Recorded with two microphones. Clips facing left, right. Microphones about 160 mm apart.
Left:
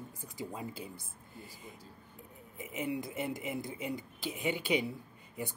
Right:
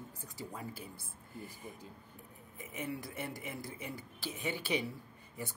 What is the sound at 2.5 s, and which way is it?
Speech, 20° left (ahead or behind).